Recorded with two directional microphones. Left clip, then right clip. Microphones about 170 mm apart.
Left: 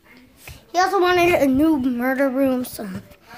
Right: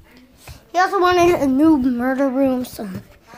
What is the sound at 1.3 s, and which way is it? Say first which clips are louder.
Speech: left 1 dB; 5° left (ahead or behind).